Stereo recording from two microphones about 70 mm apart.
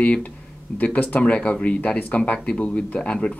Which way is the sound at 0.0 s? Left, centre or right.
Left.